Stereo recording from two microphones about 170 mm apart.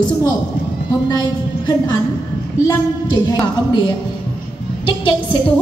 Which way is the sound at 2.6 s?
20° left (ahead or behind).